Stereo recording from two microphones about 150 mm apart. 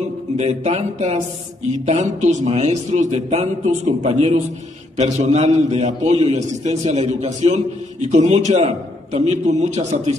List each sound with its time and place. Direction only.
0.4 s a man's voice: 45° right (ahead or behind)